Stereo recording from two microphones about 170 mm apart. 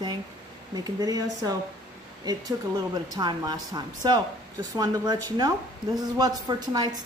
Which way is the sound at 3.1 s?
25° right (ahead or behind).